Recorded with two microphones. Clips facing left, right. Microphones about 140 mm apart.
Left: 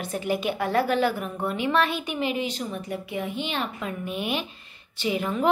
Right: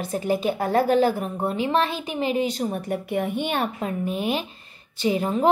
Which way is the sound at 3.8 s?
35° right (ahead or behind).